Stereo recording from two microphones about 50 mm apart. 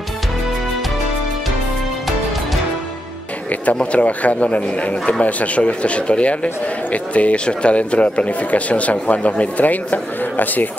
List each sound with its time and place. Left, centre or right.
3.8 s speech: left